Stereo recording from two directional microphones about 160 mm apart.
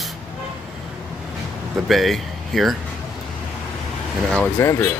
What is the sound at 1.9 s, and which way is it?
Speech, centre (ahead or behind).